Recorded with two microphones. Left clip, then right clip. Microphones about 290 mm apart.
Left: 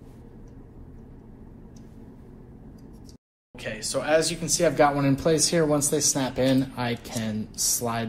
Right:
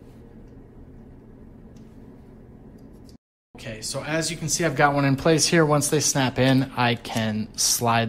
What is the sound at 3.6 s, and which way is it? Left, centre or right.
Speech, centre.